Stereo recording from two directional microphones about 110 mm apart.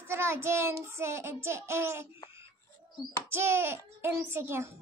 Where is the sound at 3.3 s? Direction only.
20° right (ahead or behind).